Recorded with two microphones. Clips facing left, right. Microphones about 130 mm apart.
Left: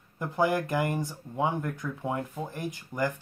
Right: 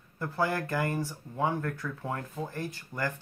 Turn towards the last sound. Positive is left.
turn(degrees=15)  # may be behind; listen again after turning